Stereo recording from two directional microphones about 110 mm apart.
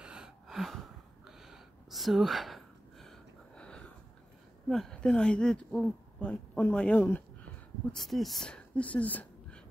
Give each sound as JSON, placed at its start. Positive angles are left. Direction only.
{"t": 0.0, "sound": "a sound", "side_deg": -5}
{"t": 4.6, "sound": "speech", "side_deg": 0}
{"t": 7.9, "sound": "speech", "side_deg": 0}